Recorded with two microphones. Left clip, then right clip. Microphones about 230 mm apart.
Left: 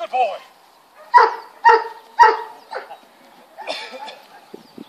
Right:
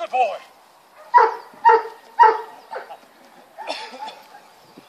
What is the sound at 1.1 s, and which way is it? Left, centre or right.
Dog, left.